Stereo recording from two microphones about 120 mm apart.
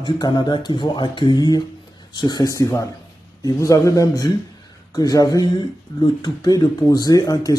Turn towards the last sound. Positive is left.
turn(degrees=30)  # may be behind; listen again after turning